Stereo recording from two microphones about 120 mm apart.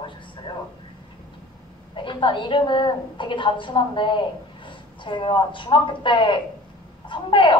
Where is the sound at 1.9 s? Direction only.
40° left (ahead or behind).